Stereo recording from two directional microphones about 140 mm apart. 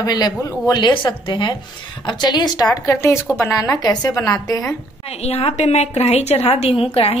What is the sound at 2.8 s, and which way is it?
Speech, 20° left (ahead or behind).